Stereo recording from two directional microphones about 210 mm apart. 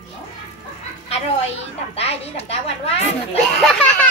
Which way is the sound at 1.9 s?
30° left (ahead or behind).